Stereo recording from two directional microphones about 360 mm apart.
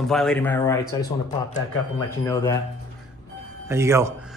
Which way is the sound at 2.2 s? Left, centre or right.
Centre.